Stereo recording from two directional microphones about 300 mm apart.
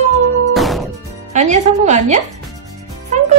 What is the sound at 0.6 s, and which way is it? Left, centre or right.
Music, centre.